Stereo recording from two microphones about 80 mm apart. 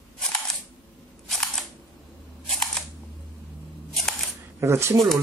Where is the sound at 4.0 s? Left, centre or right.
Centre.